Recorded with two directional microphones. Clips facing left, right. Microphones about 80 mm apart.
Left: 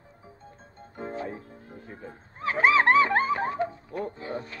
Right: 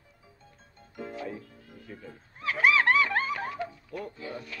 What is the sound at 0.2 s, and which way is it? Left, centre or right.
Music, left.